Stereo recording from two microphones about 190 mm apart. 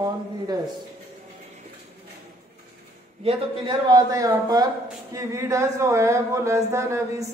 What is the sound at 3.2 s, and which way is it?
A man's voice, 25° right (ahead or behind).